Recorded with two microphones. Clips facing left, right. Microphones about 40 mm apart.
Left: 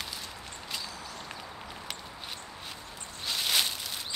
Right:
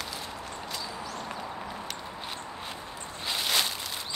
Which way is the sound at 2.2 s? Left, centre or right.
Centre.